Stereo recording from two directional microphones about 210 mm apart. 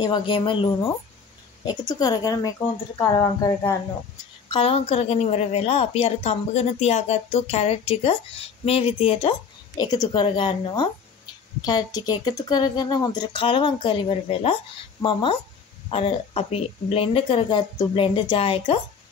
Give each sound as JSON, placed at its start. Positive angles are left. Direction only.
{"t": 0.0, "sound": "a woman's voice", "side_deg": 25}